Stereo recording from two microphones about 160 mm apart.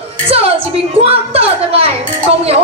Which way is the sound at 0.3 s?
40° right (ahead or behind).